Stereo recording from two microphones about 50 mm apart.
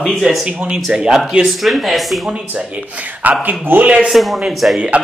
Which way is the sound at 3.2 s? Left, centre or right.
Right.